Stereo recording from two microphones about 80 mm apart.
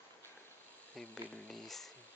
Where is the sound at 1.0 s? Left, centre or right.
Centre.